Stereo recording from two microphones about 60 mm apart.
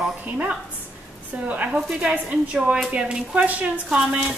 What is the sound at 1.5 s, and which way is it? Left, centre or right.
A woman's voice, right.